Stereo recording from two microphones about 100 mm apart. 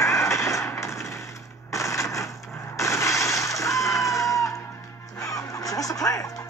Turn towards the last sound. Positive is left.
turn(degrees=35)  # may be behind; listen again after turning